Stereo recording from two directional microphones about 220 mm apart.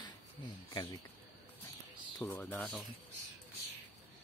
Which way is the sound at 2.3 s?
5° left (ahead or behind).